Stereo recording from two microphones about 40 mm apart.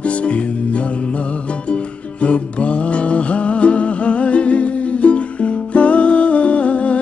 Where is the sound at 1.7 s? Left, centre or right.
Left.